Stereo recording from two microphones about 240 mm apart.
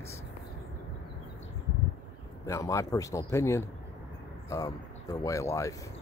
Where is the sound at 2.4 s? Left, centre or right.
Centre.